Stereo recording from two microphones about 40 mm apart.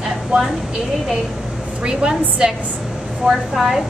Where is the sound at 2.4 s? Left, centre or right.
Right.